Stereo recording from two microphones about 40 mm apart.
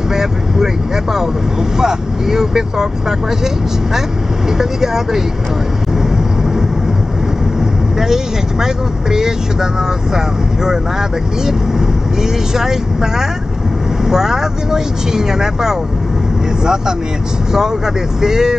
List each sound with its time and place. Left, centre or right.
0.1 s vehicle: centre
1.8 s speech: centre
4.6 s speech: centre
8.0 s speech: centre
12.2 s speech: centre
18.2 s speech: centre